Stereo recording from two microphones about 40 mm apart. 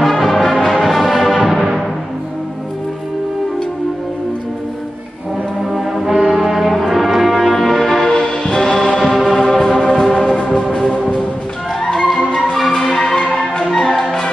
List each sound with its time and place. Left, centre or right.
0.0 s music: centre
5.6 s brass instrument: centre
7.7 s music: centre
8.1 s music: centre
8.9 s music: centre
10.2 s a sound: left
10.7 s music: centre
11.8 s music: left
12.4 s music: centre
13.1 s music: centre